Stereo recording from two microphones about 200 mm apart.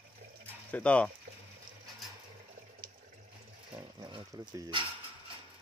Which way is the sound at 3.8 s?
25° right (ahead or behind).